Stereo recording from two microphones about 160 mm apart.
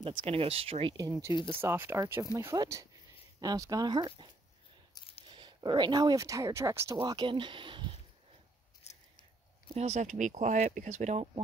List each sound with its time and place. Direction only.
0.0 s speech: 30° right (ahead or behind)
1.4 s speech: 15° right (ahead or behind)
5.3 s speech: 30° right (ahead or behind)
8.8 s scissors: 45° left (ahead or behind)
9.8 s speech: 45° right (ahead or behind)